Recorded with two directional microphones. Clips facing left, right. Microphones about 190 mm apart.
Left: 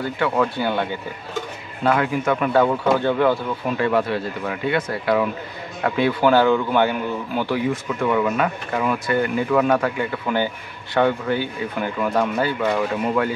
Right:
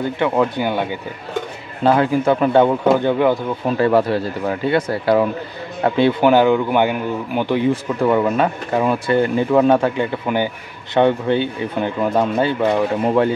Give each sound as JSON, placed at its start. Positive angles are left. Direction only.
{"t": 0.2, "sound": "speech", "side_deg": -15}
{"t": 1.8, "sound": "speech", "side_deg": -30}
{"t": 3.7, "sound": "speech", "side_deg": -35}
{"t": 7.7, "sound": "speech", "side_deg": -30}